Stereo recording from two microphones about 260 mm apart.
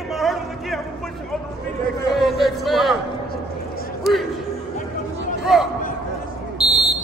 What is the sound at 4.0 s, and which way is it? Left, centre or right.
Music, centre.